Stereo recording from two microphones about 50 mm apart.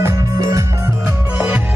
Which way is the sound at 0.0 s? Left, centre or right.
Right.